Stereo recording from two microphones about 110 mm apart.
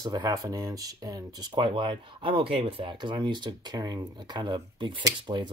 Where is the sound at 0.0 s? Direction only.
35° right (ahead or behind).